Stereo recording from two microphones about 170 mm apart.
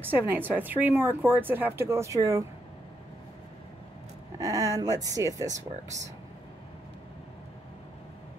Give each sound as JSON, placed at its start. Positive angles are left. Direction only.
{"t": 0.0, "sound": "speech", "side_deg": -10}
{"t": 4.4, "sound": "speech", "side_deg": -20}